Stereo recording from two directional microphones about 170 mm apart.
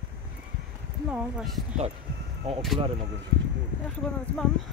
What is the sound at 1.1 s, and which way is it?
Speech, 5° right (ahead or behind).